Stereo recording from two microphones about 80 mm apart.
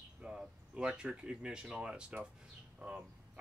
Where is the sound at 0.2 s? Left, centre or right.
Centre.